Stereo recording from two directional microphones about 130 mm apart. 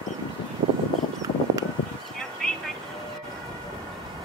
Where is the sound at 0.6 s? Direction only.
45° right (ahead or behind).